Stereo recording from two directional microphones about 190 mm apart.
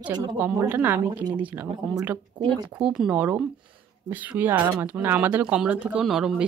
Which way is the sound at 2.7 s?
5° right (ahead or behind).